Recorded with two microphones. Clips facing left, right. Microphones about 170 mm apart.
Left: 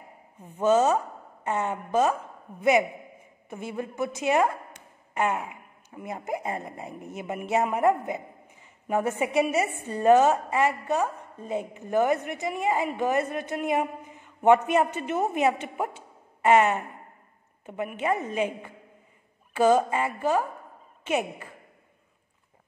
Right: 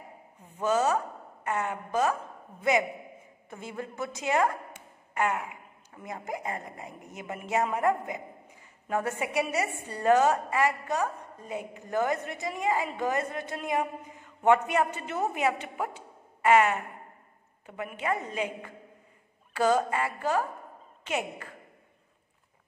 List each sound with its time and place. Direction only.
0.6 s a woman's voice: 25° left (ahead or behind)
3.4 s a woman's voice: 20° left (ahead or behind)